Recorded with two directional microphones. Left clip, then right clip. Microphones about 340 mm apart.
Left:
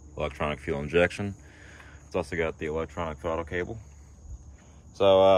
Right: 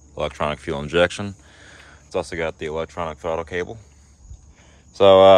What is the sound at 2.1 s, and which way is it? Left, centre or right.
Speech, centre.